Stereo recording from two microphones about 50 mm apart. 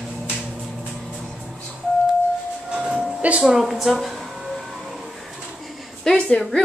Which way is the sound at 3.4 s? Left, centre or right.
Centre.